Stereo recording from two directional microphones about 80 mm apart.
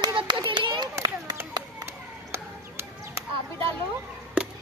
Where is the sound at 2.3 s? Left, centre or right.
Right.